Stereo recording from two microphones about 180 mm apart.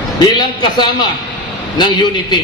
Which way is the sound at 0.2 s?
25° left (ahead or behind).